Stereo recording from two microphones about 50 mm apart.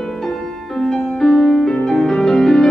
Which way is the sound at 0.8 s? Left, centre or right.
Centre.